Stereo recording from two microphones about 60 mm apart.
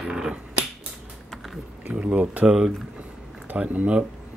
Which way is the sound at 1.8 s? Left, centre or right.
Right.